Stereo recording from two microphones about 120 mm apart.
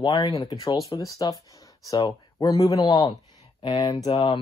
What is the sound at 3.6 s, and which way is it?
Speech, 40° left (ahead or behind).